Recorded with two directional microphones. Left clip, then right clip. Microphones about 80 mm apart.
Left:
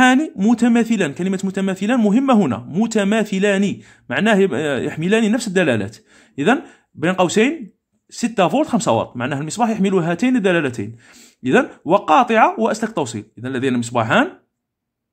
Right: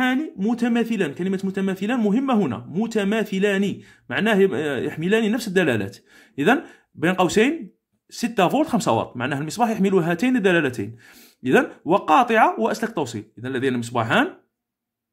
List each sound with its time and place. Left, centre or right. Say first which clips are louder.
0.5 s a man's voice: left 6 dB; left